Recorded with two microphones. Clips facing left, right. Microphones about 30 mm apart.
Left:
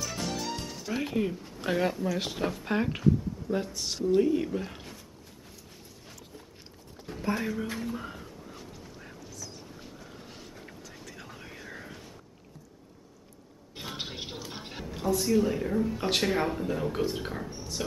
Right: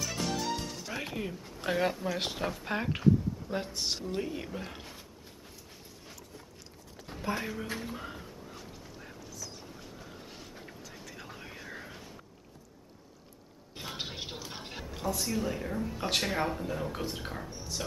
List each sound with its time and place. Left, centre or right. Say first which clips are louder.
0.0 s music: even; centre
1.1 s speech: left 7 dB; centre
2.0 s speech: left 2 dB; centre
2.3 s speech: left 4 dB; centre
3.4 s speech: left 2 dB; centre
4.0 s speech: left 11 dB; centre
7.1 s a sound: left 4 dB; centre
9.9 s boat: left 1 dB; centre
10.6 s vehicle: left 1 dB; centre
13.7 s a woman's voice: left 1 dB; centre
17.6 s a sound: left 3 dB; centre